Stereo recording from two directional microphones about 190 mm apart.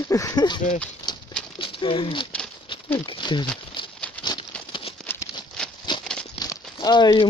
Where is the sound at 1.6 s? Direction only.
25° left (ahead or behind).